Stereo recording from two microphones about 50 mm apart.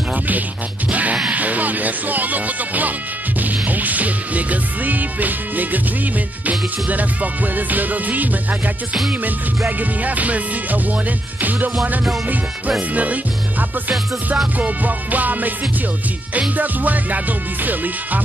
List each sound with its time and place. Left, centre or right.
1.3 s music: right
6.9 s music: right